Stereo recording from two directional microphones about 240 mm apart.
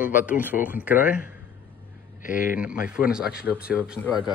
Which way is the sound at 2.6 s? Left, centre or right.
Centre.